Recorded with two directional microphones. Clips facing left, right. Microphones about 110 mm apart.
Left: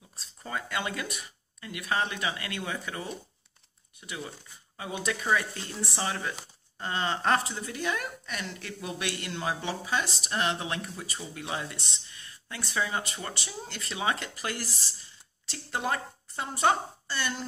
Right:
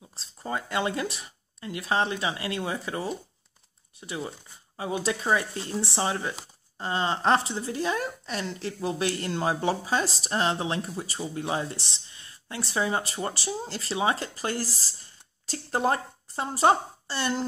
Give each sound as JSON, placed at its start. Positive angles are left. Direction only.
{"t": 0.1, "sound": "speech", "side_deg": -30}